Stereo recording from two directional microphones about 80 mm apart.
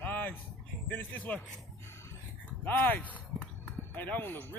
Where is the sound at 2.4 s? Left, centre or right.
Centre.